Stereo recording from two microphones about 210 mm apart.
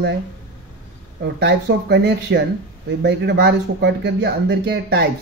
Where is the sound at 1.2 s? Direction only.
55° right (ahead or behind).